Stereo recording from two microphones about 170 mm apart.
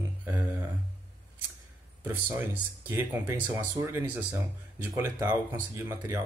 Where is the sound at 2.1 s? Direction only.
15° right (ahead or behind).